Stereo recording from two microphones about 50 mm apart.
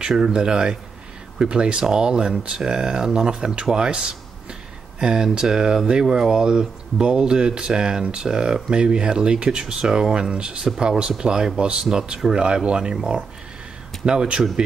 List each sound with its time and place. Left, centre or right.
0.2 s speech: centre